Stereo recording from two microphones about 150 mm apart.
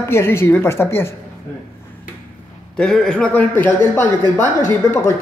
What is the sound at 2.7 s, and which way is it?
A woman's voice, 5° left (ahead or behind).